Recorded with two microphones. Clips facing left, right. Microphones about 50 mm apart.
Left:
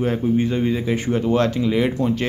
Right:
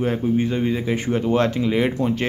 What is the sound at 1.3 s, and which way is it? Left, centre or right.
Speech, right.